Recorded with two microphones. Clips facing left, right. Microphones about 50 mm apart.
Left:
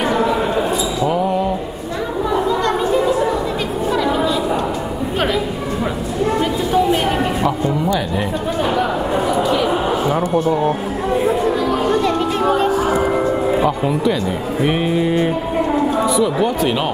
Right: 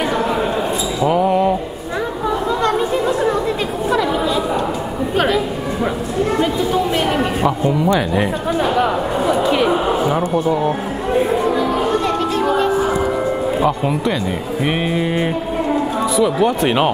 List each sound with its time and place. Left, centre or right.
1.0 s a sound: right
7.6 s speech: right
9.3 s a sound: right
11.4 s chatter: right
12.8 s music: left
14.6 s mantra: centre
16.0 s speech: centre
16.6 s speech: right